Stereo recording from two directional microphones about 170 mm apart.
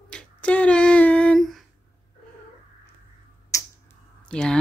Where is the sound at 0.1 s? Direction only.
5° left (ahead or behind).